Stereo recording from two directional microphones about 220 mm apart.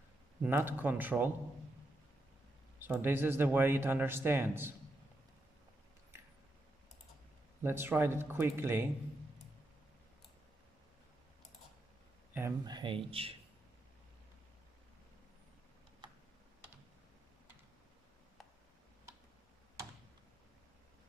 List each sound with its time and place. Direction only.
0.4 s a man's voice: 10° right (ahead or behind)
2.8 s a man's voice: 10° right (ahead or behind)
7.6 s a man's voice: 10° right (ahead or behind)
12.4 s speech: 15° right (ahead or behind)